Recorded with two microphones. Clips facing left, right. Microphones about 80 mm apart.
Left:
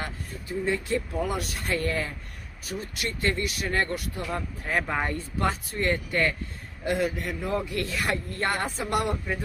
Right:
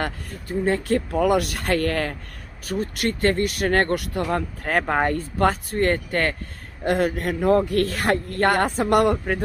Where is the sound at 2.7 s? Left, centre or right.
Right.